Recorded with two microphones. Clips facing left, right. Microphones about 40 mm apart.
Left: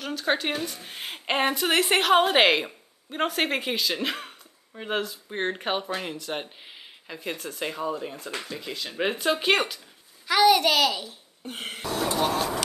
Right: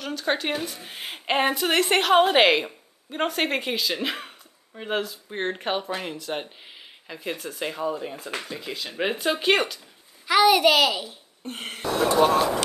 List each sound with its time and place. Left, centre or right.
0.0 s a woman's voice: centre
11.8 s speech: right